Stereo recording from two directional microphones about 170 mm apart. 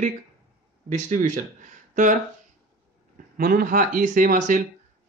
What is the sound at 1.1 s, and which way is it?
Speech, 45° right (ahead or behind).